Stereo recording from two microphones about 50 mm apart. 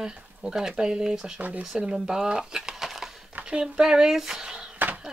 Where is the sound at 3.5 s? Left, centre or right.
Centre.